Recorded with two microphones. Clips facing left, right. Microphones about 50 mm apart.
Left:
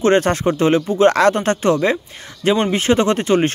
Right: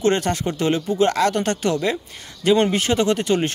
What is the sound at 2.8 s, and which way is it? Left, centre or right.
Speech, left.